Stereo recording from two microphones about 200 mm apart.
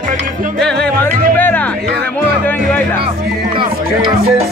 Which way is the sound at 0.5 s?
5° left (ahead or behind).